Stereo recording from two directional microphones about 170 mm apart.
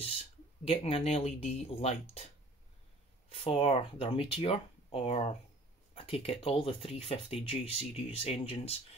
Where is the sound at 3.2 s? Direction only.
35° left (ahead or behind).